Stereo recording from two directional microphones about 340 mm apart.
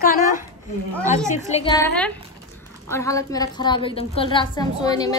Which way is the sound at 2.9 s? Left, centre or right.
Centre.